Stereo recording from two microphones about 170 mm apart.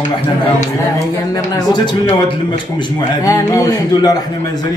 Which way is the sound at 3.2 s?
20° left (ahead or behind).